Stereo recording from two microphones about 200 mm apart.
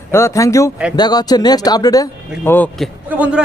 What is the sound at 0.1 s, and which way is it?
Speech, 15° left (ahead or behind).